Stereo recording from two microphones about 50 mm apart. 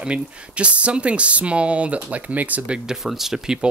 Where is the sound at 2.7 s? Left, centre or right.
Centre.